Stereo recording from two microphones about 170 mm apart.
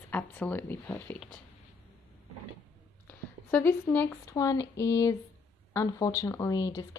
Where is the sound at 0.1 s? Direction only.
10° left (ahead or behind).